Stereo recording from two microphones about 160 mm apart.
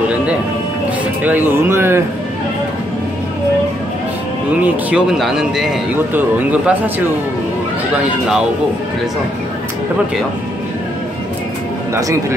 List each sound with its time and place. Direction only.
1.2 s speech: 15° right (ahead or behind)
4.5 s speech: 10° right (ahead or behind)
7.9 s speech: 5° right (ahead or behind)
11.9 s speech: 15° right (ahead or behind)